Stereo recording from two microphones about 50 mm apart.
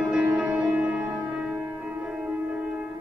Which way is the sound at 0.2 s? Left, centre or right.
Right.